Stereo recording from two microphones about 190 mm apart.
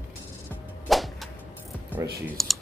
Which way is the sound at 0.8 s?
Centre (ahead or behind).